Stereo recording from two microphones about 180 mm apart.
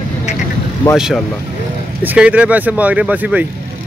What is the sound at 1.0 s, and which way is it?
Speech, 5° right (ahead or behind).